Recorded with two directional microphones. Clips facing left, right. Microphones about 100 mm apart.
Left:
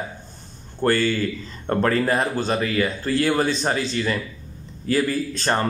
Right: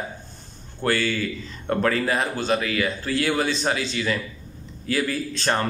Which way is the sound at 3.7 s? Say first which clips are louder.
Left 2 dB; centre (ahead or behind).